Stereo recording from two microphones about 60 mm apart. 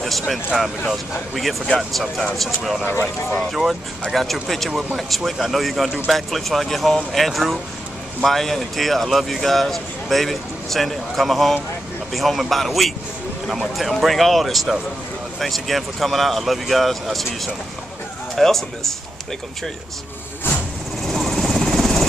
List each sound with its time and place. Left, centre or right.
0.0 s speech: centre
4.1 s speech: centre
21.1 s helicopter: centre